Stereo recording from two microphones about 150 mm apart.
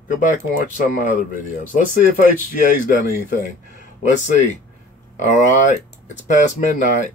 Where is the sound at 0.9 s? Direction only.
60° left (ahead or behind).